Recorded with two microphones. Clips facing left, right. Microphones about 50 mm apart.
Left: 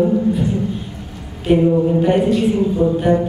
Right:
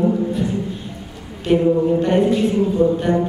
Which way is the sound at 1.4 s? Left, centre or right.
Centre.